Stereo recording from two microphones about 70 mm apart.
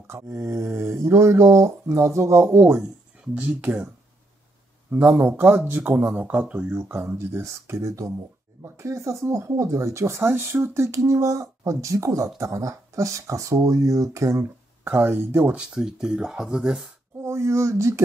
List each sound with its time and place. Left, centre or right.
0.6 s speech: right
2.4 s speech: right
4.9 s speech: right
14.9 s speech: right
15.5 s speech: centre
17.2 s speech: right